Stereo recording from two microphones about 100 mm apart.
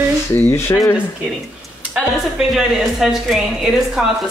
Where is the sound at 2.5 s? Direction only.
Centre (ahead or behind).